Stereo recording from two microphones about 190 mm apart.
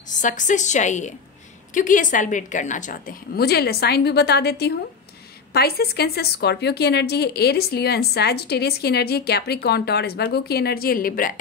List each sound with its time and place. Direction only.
0.1 s a woman's voice: 40° left (ahead or behind)